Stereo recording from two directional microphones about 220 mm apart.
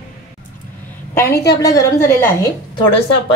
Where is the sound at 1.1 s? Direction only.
10° left (ahead or behind).